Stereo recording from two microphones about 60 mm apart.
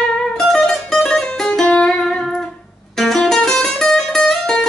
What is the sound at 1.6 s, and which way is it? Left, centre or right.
Music, centre.